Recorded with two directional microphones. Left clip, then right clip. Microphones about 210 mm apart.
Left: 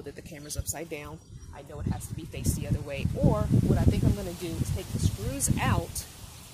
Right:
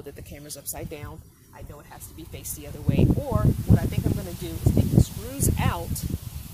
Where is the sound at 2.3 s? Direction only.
10° right (ahead or behind).